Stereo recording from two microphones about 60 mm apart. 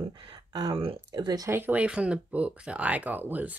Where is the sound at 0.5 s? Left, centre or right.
Right.